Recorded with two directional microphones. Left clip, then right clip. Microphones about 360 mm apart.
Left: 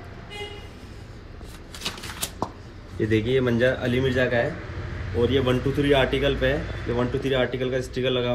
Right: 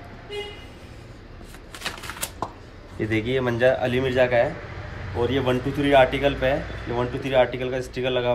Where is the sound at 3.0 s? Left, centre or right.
Centre.